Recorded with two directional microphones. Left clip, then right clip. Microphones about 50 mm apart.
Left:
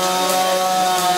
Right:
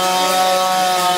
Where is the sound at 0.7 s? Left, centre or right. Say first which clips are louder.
Right 1 dB; left.